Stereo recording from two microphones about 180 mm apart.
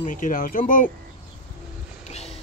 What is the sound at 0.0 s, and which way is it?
Speech, 45° left (ahead or behind).